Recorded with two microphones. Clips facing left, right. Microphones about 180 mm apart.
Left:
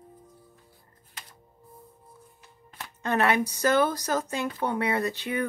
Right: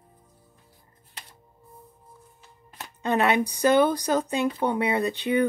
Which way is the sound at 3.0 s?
20° right (ahead or behind).